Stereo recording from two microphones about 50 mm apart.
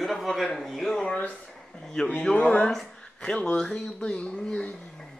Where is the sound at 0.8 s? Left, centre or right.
Centre.